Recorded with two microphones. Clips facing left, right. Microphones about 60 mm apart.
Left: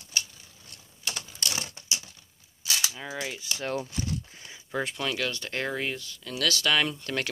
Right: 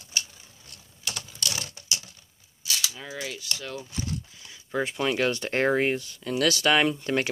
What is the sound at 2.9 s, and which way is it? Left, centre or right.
Mechanisms, centre.